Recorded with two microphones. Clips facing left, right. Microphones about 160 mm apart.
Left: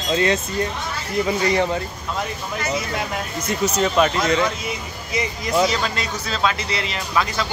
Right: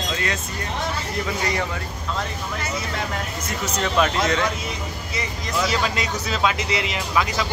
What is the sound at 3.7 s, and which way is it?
Speech, 5° left (ahead or behind).